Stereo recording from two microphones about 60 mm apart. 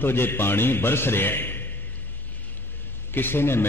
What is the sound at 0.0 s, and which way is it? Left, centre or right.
A man's voice, left.